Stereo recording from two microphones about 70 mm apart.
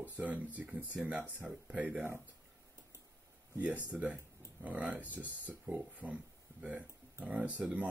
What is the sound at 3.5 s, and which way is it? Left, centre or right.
Speech, right.